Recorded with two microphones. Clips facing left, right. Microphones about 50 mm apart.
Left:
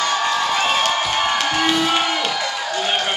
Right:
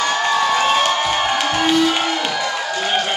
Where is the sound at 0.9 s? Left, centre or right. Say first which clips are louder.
Right 1 dB; centre.